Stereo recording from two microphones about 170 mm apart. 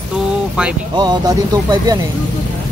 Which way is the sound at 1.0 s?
25° right (ahead or behind).